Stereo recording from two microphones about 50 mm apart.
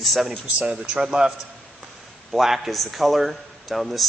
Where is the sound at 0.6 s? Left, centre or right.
Right.